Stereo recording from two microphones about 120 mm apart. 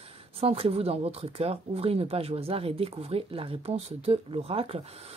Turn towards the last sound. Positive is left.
turn(degrees=-55)  # may be behind; listen again after turning